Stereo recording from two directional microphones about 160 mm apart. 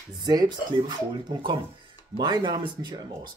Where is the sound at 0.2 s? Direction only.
25° right (ahead or behind).